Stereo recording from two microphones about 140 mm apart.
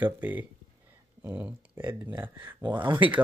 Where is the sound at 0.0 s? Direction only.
15° right (ahead or behind).